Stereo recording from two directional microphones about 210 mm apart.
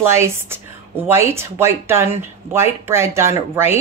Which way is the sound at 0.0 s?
10° right (ahead or behind).